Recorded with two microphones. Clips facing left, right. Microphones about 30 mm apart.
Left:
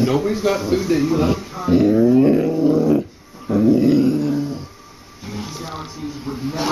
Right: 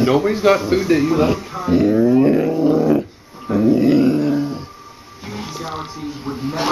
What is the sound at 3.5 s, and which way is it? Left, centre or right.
Dog, centre.